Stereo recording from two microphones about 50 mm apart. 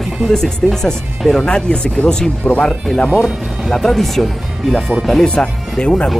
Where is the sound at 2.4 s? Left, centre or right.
Left.